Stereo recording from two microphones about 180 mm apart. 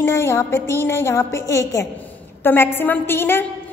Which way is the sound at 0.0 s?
15° left (ahead or behind).